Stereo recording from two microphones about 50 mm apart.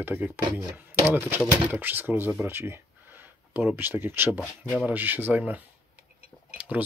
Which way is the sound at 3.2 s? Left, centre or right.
Right.